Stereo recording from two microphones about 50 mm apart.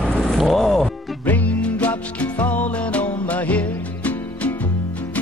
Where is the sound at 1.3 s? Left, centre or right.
Left.